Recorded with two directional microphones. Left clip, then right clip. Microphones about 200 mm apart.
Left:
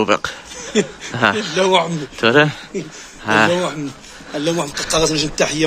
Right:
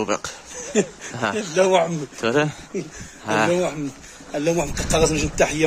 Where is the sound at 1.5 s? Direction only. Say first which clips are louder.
Left 2 dB; 45° right (ahead or behind).